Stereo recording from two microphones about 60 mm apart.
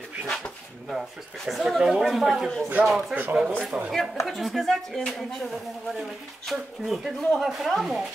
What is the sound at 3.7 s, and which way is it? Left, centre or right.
Speech, right.